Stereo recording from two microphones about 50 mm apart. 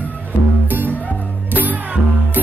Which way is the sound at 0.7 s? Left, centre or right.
Right.